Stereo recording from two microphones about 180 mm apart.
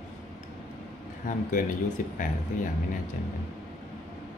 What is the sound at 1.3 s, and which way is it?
Speech, 45° left (ahead or behind).